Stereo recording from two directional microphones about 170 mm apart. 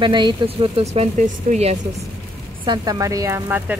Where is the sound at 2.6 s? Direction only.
25° right (ahead or behind).